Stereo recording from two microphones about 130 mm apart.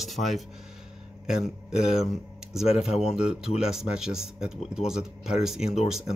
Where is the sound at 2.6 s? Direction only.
50° left (ahead or behind).